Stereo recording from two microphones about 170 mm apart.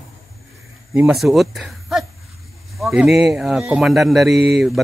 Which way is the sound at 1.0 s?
5° right (ahead or behind).